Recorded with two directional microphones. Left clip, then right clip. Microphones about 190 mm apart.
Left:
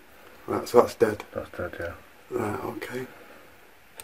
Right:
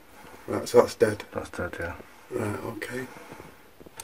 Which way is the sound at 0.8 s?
15° left (ahead or behind).